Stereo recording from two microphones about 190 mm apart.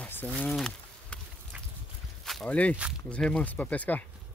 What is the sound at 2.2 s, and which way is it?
Speech, centre (ahead or behind).